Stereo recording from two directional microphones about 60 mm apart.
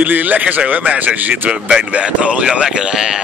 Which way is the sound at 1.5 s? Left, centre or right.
Centre.